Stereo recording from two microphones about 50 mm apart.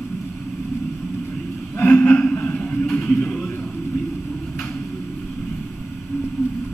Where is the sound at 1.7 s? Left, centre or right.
Left.